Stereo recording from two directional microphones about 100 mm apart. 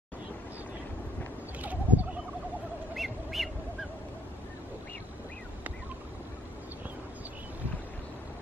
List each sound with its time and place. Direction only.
1.6 s sheep: 15° right (ahead or behind)
3.0 s bird: centre (ahead or behind)